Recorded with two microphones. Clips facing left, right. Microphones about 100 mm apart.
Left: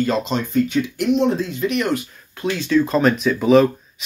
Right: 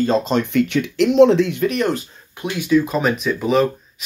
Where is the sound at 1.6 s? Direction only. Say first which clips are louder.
Right 1 dB; 35° right (ahead or behind).